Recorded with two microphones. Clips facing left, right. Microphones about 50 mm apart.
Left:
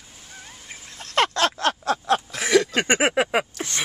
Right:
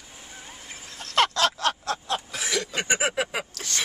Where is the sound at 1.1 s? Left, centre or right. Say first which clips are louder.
Left 1 dB; left.